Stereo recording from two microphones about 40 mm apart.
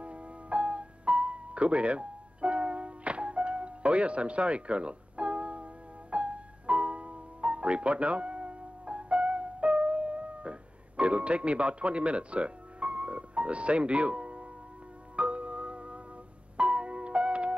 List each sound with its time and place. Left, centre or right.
0.0 s music: right